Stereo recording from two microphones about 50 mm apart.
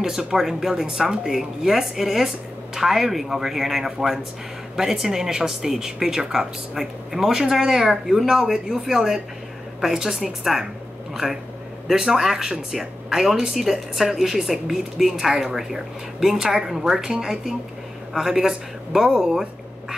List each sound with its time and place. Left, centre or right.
0.0 s speech: centre
11.2 s speech: right
11.9 s speech: centre